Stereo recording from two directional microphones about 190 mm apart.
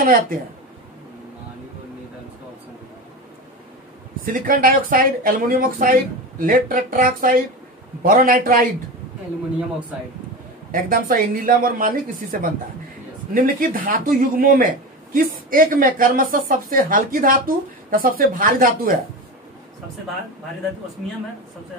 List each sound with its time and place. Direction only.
0.0 s a man's voice: 50° right (ahead or behind)
4.2 s a man's voice: 50° right (ahead or behind)
10.7 s a man's voice: 45° right (ahead or behind)